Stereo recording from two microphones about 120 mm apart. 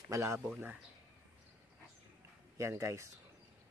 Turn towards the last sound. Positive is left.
turn(degrees=-25)  # may be behind; listen again after turning